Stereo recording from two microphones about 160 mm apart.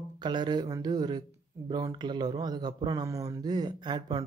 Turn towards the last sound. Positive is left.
turn(degrees=-25)  # may be behind; listen again after turning